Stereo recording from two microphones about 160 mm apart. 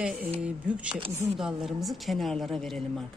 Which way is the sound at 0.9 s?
35° right (ahead or behind).